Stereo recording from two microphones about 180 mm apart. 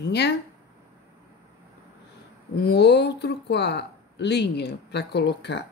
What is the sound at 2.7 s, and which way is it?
Speech, 70° left (ahead or behind).